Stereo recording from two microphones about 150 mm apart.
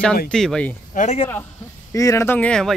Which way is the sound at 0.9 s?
55° left (ahead or behind).